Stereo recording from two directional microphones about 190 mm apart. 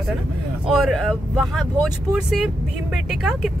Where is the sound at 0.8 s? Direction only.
Centre (ahead or behind).